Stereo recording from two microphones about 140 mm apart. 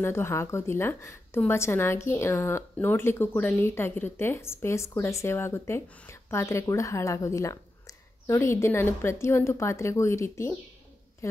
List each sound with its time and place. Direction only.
0.0 s a woman's voice: 15° left (ahead or behind)